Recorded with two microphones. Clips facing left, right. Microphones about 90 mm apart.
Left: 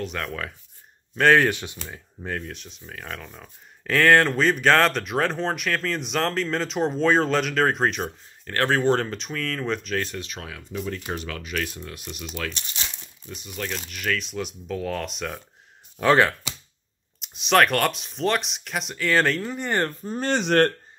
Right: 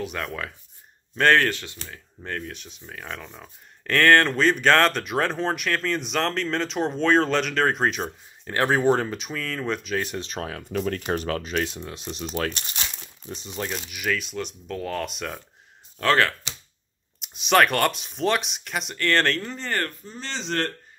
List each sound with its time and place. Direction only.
0.0 s speech: 5° right (ahead or behind)
1.5 s speech: 20° left (ahead or behind)
2.2 s speech: 5° left (ahead or behind)
8.5 s speech: 15° right (ahead or behind)
10.0 s speech: 30° right (ahead or behind)
10.6 s speech: 55° right (ahead or behind); by 12.4 s 30° right (ahead or behind)
12.4 s speech: 50° right (ahead or behind)
13.3 s speech: 25° right (ahead or behind)
13.7 s speech: 10° right (ahead or behind)
16.0 s speech: 15° left (ahead or behind)
17.2 s speech: centre (ahead or behind); by 19.9 s 15° left (ahead or behind)
20.1 s speech: 50° left (ahead or behind)